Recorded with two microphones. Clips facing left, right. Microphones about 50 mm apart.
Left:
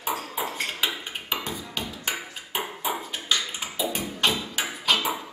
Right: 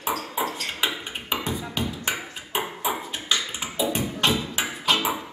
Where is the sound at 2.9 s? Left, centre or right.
Centre.